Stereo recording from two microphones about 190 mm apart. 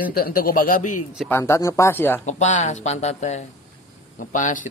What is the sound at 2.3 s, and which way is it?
Speech, 40° left (ahead or behind).